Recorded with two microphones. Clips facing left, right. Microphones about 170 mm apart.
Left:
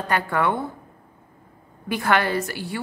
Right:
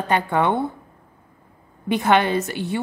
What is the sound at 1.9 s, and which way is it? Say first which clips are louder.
Speech: right 4 dB; 20° right (ahead or behind).